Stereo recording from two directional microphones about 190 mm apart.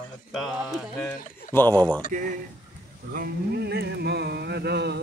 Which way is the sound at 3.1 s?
55° right (ahead or behind).